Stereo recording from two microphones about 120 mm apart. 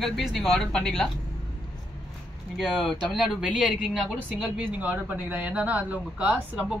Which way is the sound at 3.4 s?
10° right (ahead or behind).